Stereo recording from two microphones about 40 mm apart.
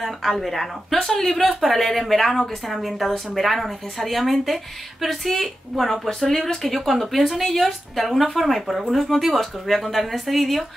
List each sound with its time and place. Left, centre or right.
0.0 s speech: centre
0.9 s speech: centre